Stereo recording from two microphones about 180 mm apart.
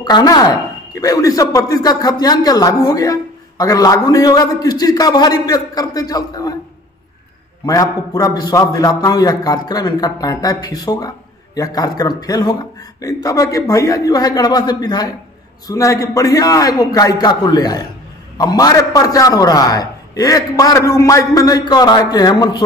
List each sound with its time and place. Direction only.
0.0 s a man's voice: 25° left (ahead or behind)
7.6 s a man's voice: 20° left (ahead or behind)